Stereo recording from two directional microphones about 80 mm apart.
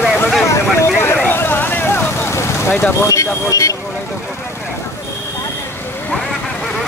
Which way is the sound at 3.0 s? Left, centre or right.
Left.